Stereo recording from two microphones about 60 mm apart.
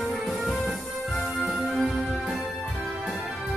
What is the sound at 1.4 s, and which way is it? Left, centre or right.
Music, centre.